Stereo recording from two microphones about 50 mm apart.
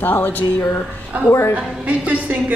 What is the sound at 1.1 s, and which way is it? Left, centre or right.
A woman's voice, right.